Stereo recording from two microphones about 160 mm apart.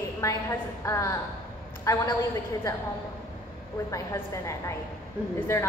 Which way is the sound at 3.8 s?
20° left (ahead or behind).